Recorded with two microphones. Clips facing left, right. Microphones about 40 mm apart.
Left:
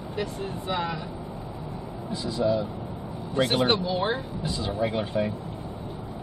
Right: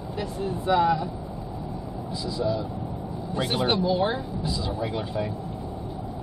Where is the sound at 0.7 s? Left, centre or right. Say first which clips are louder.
Right 9 dB; centre.